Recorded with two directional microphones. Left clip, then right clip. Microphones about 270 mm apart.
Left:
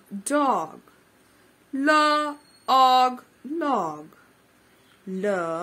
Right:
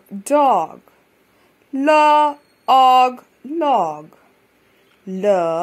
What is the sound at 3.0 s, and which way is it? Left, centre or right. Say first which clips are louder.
Speech: right 6 dB; centre.